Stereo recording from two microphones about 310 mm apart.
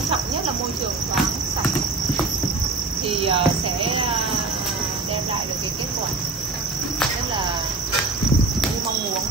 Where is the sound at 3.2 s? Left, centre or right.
Centre.